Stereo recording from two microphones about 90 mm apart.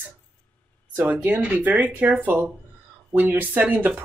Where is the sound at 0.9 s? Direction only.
20° right (ahead or behind).